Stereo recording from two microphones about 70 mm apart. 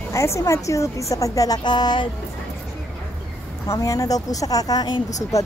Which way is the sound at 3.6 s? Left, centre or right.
Left.